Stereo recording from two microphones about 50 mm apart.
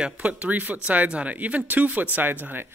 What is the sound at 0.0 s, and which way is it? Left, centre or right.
Speech, right.